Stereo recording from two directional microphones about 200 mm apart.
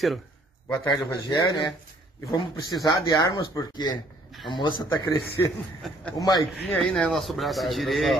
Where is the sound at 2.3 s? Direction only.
20° left (ahead or behind).